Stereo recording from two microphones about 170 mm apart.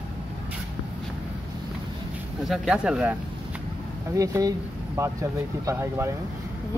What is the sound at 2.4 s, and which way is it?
Speech, centre (ahead or behind).